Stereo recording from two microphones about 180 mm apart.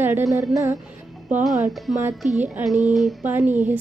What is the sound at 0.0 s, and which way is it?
Music, 15° right (ahead or behind).